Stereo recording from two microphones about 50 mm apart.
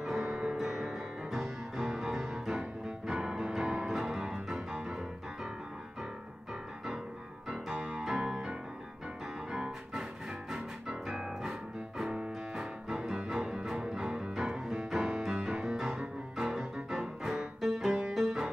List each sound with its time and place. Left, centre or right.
0.2 s music: centre
3.9 s piano: centre
7.7 s music: centre
11.1 s music: centre